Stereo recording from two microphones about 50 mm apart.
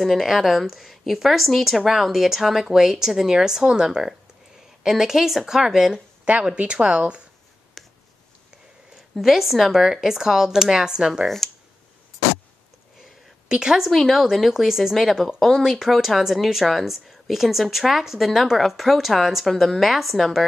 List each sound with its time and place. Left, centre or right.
0.0 s speech: centre
6.2 s speech: right
7.8 s a sound: centre
9.1 s speech: centre
11.2 s speech: centre
13.5 s speech: centre
13.8 s speech: centre